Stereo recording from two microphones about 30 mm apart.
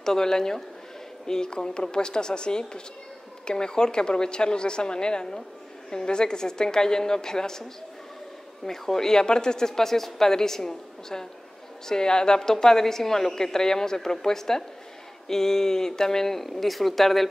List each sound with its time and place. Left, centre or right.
0.0 s a woman's voice: centre
8.6 s a woman's voice: centre